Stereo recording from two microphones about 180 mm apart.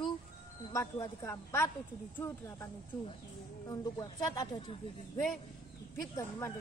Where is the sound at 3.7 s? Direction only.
20° left (ahead or behind).